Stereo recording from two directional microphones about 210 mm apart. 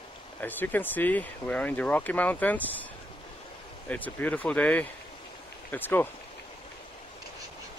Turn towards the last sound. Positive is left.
turn(degrees=10)  # may be behind; listen again after turning